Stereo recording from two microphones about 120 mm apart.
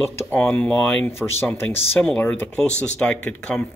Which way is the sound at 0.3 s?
15° left (ahead or behind).